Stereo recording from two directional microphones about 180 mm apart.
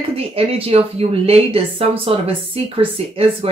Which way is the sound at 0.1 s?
35° right (ahead or behind).